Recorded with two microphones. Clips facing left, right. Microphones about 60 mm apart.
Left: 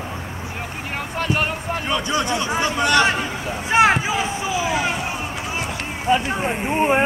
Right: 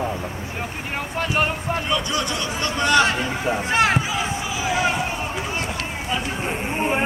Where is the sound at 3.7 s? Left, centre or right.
Left.